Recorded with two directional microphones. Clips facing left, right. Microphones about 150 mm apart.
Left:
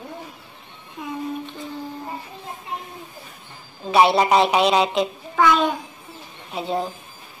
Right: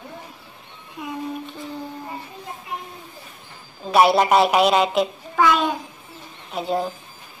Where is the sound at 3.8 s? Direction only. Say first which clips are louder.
Even; centre (ahead or behind).